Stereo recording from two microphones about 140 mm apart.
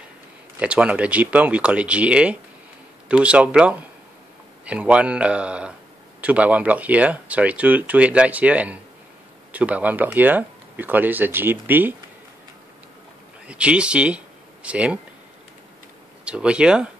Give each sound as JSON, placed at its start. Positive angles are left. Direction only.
{"t": 0.6, "sound": "speech", "side_deg": -10}
{"t": 13.5, "sound": "speech", "side_deg": -10}
{"t": 16.3, "sound": "speech", "side_deg": -5}